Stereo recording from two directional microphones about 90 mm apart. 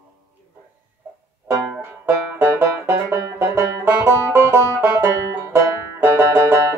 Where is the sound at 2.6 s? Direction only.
30° right (ahead or behind).